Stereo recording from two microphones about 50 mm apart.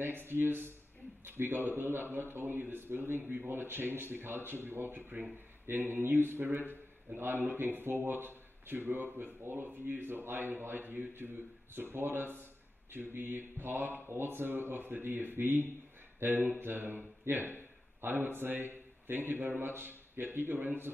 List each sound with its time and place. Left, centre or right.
0.0 s a man's voice: right